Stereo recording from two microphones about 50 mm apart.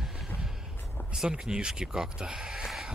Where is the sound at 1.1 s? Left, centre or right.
Centre.